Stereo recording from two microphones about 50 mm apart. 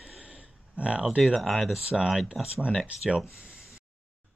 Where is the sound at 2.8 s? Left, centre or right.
Right.